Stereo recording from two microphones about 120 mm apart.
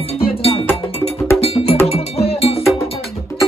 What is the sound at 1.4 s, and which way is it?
Music, 55° left (ahead or behind).